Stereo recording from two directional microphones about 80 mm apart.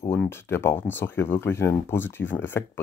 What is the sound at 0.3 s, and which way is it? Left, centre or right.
Speech, left.